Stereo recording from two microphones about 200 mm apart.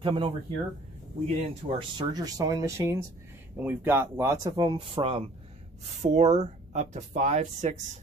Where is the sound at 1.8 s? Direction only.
20° right (ahead or behind).